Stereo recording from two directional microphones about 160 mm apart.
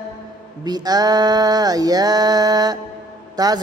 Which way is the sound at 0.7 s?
25° right (ahead or behind).